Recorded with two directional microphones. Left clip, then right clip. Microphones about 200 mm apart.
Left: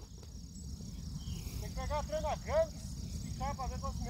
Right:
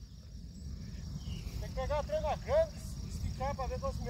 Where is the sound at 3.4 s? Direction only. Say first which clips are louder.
Right 3 dB; 45° right (ahead or behind).